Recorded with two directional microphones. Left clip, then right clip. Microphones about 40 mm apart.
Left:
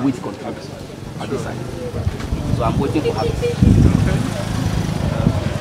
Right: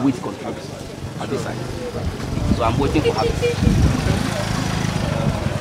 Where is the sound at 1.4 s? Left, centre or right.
Right.